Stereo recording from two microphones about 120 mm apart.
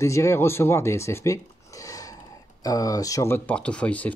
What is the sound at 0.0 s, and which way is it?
Speech, 25° left (ahead or behind).